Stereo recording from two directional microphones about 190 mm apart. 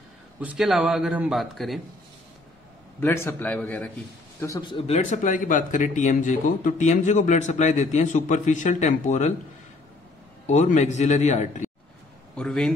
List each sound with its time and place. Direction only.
0.4 s a man's voice: 5° right (ahead or behind)
3.0 s a man's voice: 10° left (ahead or behind)
4.4 s speech: 20° left (ahead or behind); by 9.3 s 35° left (ahead or behind)
10.4 s speech: 40° left (ahead or behind)
12.4 s a man's voice: 5° left (ahead or behind)